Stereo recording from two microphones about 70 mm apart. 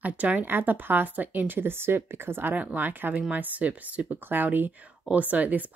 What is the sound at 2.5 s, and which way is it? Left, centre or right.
Speech, right.